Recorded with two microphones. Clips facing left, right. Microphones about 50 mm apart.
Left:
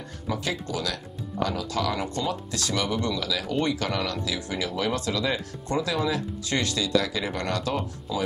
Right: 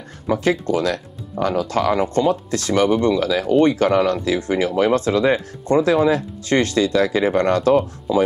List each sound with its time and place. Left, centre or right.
0.3 s speech: right